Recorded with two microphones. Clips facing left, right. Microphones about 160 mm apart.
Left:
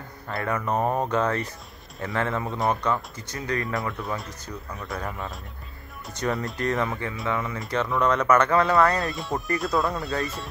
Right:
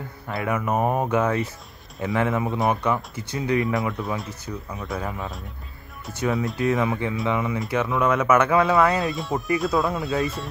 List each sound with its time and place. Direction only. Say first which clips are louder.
0.3 s speech: right 2 dB; 5° right (ahead or behind)
3.6 s speech: right 4 dB; centre (ahead or behind)